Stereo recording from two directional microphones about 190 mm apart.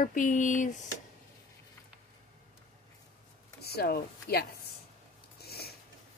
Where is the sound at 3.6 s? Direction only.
55° left (ahead or behind).